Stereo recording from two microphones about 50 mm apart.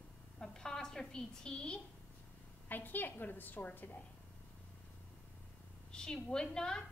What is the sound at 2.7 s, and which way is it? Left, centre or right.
A woman's voice, left.